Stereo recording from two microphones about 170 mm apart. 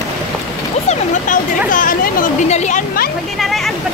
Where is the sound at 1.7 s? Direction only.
55° left (ahead or behind).